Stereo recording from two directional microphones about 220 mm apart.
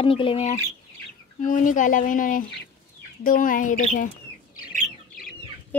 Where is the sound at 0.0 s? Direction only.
25° left (ahead or behind).